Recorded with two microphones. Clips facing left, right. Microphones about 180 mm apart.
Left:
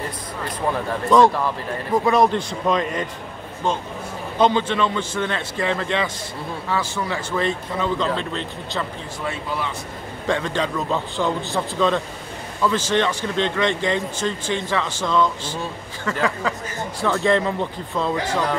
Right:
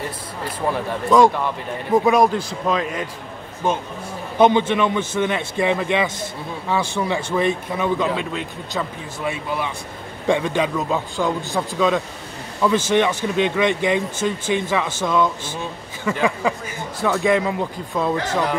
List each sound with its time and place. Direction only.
0.7 s speech: centre (ahead or behind)
4.4 s a man's voice: 20° right (ahead or behind)